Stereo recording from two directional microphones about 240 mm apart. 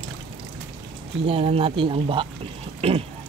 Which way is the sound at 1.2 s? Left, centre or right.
Right.